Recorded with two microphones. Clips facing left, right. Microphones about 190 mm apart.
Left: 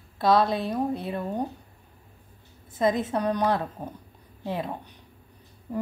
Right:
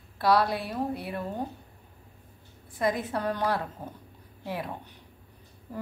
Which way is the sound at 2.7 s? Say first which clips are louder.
Left 4 dB; 20° left (ahead or behind).